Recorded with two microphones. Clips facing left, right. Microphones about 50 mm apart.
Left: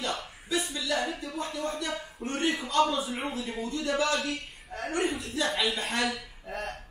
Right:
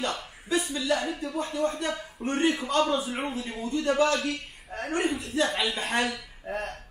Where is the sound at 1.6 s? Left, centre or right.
Right.